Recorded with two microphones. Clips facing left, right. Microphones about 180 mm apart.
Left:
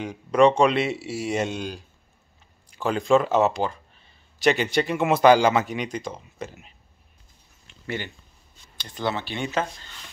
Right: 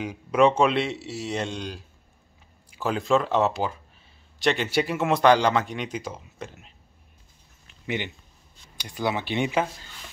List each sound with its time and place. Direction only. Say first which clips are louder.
0.0 s speech: left 2 dB; 5° right (ahead or behind)
7.8 s speech: right 2 dB; 15° right (ahead or behind)